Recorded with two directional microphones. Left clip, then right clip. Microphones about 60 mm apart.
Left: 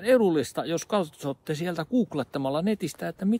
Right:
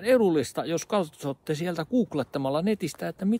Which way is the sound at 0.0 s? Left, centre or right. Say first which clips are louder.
Even; centre.